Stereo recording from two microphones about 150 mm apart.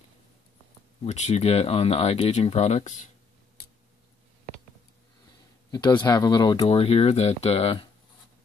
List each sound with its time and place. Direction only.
1.0 s speech: 50° left (ahead or behind)
5.7 s speech: 30° left (ahead or behind)
6.7 s speech: 40° left (ahead or behind)